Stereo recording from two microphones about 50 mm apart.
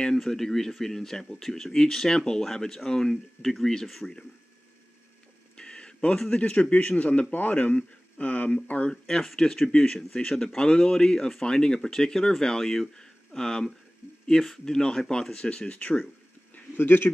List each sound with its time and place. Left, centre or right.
0.0 s a man's voice: centre
5.6 s a sound: centre
6.3 s a man's voice: left
8.9 s a man's voice: centre
16.7 s speech: left